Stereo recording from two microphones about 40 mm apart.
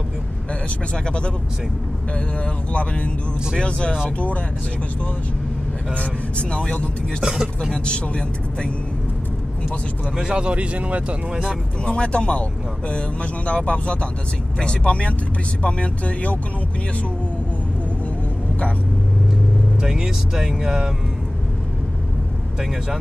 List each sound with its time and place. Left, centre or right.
0.9 s speech: left
2.4 s speech: left
5.9 s speech: left
7.2 s speech: centre
7.7 s speech: left
10.1 s speech: centre
11.8 s speech: left
19.8 s speech: centre